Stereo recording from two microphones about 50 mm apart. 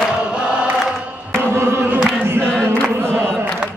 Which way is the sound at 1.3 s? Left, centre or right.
Right.